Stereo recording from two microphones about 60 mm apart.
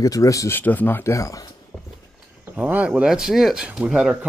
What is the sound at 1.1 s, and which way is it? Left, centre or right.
Speech, left.